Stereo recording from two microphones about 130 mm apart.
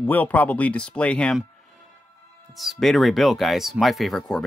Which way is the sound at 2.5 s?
Centre (ahead or behind).